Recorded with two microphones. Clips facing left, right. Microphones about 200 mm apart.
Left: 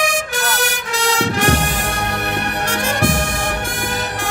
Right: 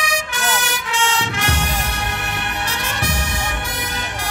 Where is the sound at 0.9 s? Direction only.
35° left (ahead or behind).